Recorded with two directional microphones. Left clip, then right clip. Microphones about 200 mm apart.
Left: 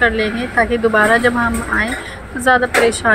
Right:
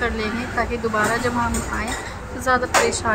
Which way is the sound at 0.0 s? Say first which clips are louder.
Left 8 dB; 15° left (ahead or behind).